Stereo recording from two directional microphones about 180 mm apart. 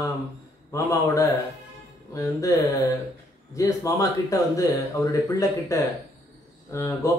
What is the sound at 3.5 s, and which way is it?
Speech, 20° left (ahead or behind).